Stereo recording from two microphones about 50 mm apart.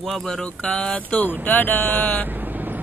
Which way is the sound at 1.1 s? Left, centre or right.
Left.